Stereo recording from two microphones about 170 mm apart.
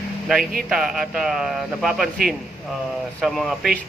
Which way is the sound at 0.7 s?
5° right (ahead or behind).